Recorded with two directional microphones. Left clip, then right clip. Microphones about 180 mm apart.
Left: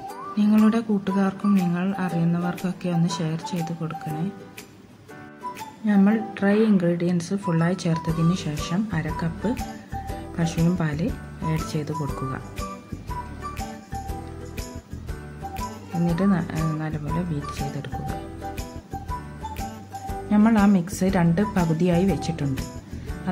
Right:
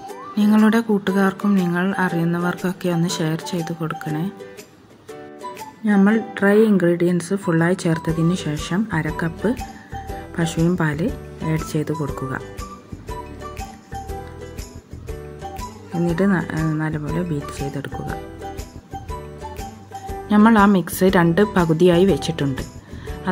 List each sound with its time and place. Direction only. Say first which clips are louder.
0.4 s speech: right 4 dB; 20° right (ahead or behind)
5.9 s speech: right 4 dB; 10° right (ahead or behind)
11.9 s speech: right 5 dB; centre (ahead or behind)
13.6 s jingle bell: right 1 dB; centre (ahead or behind)
15.5 s music: right 1 dB; centre (ahead or behind)
16.2 s speech: right 5 dB; 15° right (ahead or behind)
18.0 s music: right 3 dB; centre (ahead or behind)
20.2 s speech: right 7 dB; 15° right (ahead or behind)